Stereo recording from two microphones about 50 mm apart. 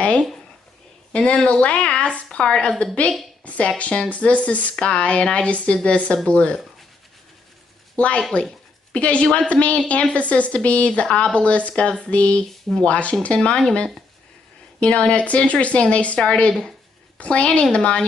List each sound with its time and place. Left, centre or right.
1.1 s a woman's voice: centre
7.9 s speech: left